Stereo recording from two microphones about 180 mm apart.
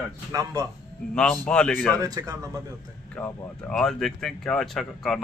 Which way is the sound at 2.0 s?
20° right (ahead or behind).